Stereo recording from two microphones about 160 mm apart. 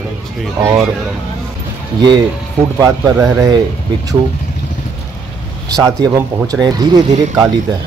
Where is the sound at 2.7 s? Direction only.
20° right (ahead or behind).